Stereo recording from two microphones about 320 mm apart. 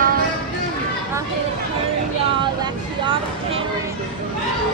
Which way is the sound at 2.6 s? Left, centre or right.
Centre.